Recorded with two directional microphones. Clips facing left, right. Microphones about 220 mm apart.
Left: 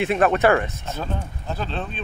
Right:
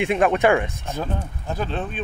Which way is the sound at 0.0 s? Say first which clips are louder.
Even; 15° right (ahead or behind).